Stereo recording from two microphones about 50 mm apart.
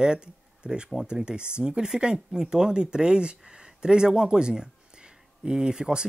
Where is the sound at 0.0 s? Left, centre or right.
Centre.